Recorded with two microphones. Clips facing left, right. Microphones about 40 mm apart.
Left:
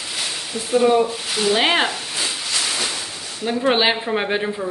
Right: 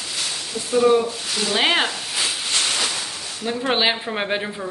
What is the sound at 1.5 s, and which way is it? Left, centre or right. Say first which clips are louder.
Speech: left 1 dB; centre.